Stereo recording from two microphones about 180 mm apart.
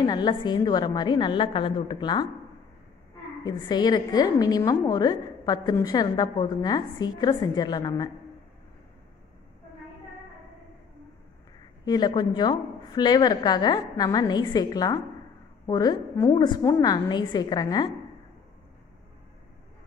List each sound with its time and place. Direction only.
0.0 s a woman's voice: 25° left (ahead or behind)
3.4 s a woman's voice: 25° left (ahead or behind)
11.8 s a woman's voice: 25° left (ahead or behind)